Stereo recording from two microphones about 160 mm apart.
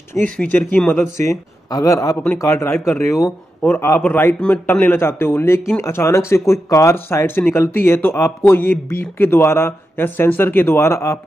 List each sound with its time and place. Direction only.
0.4 s a man's voice: 10° left (ahead or behind)
1.7 s a man's voice: 20° left (ahead or behind)